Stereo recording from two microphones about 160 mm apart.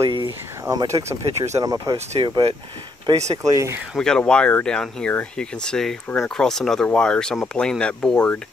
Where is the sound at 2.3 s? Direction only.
25° right (ahead or behind).